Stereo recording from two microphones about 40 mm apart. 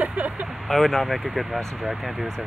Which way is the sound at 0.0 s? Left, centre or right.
Right.